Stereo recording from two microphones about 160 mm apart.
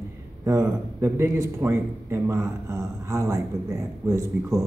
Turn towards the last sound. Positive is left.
turn(degrees=-20)  # may be behind; listen again after turning